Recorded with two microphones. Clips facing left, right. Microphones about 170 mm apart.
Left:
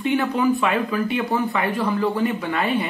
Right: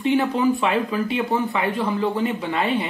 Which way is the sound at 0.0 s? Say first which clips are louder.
Right 1 dB; 25° right (ahead or behind).